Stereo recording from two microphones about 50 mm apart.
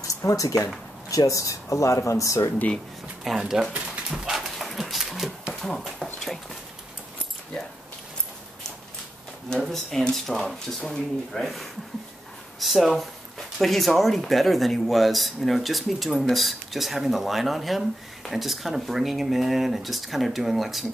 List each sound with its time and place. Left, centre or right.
0.0 s speech: left
3.3 s speech: centre
3.7 s dog: right
4.2 s dog: centre
5.5 s a sound: centre
6.1 s horse: centre
9.6 s speech: centre